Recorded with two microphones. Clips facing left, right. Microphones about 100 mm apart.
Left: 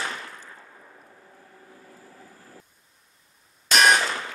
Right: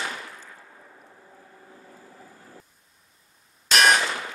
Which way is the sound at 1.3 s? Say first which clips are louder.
Right 1 dB; 15° right (ahead or behind).